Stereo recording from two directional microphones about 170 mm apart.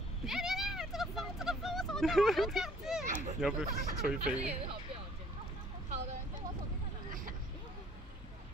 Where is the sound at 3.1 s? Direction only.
50° right (ahead or behind).